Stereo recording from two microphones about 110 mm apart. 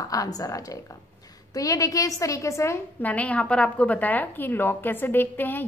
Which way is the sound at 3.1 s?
10° left (ahead or behind).